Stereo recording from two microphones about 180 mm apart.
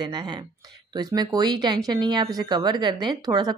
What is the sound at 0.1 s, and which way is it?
A woman's voice, 25° right (ahead or behind).